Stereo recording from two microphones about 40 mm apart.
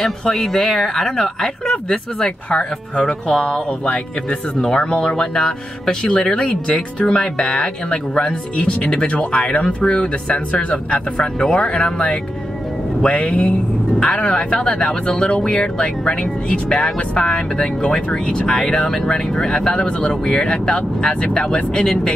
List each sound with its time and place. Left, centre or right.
0.0 s speech: centre; by 4.4 s left
4.6 s speech: centre
18.9 s speech: centre